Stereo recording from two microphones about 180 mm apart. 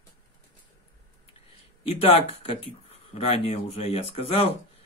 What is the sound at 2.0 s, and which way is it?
Speech, 30° left (ahead or behind).